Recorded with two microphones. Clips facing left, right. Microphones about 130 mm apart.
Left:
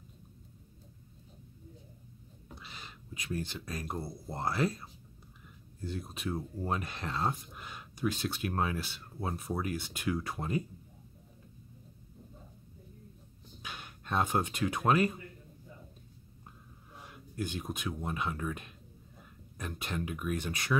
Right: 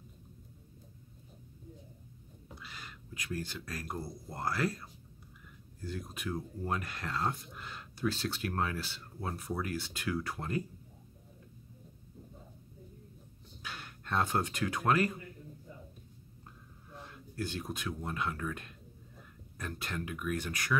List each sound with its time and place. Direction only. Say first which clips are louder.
2.5 s speech: even; 20° left (ahead or behind)
13.6 s speech: even; 15° left (ahead or behind)
17.0 s speech: left 1 dB; 15° left (ahead or behind)